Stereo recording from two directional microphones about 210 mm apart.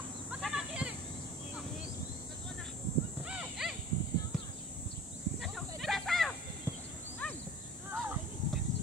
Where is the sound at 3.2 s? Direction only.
5° right (ahead or behind).